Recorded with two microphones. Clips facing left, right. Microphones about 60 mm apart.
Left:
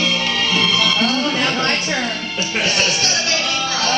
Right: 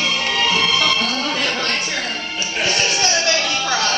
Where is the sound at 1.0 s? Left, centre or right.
Centre.